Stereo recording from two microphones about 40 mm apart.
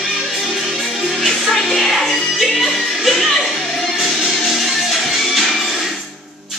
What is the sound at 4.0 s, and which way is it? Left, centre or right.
Music, centre.